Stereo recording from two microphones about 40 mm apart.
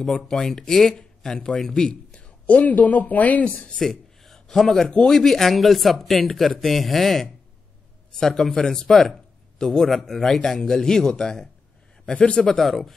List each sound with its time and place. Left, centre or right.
0.0 s speech: centre; by 2.3 s left
2.4 s speech: left
3.7 s a sound: centre
4.8 s a man's voice: centre
12.4 s speech: centre